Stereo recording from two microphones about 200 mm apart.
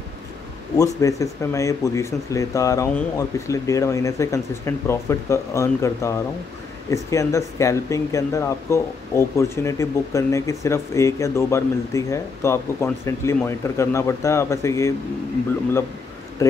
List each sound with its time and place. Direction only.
0.7 s speech: 15° left (ahead or behind)